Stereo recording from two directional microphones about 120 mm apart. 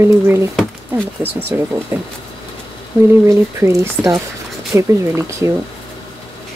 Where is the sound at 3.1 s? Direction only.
20° right (ahead or behind).